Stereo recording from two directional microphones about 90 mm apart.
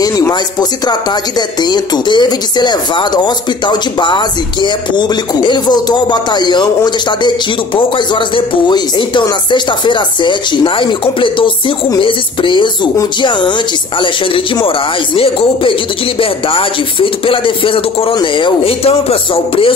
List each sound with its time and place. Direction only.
0.3 s speech: 50° left (ahead or behind); by 14.7 s 70° left (ahead or behind)
15.1 s speech: 90° left
18.1 s speech: 65° left (ahead or behind); by 19.7 s 90° left